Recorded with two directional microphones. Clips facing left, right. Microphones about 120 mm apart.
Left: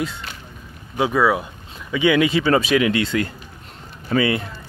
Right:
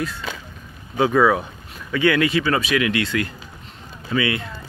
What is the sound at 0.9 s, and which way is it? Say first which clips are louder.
Speech: right 2 dB; 5° left (ahead or behind).